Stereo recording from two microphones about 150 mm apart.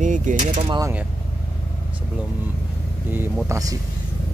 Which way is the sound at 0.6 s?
25° right (ahead or behind).